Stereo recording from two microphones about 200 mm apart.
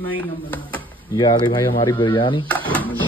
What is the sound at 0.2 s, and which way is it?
Speech, 10° left (ahead or behind).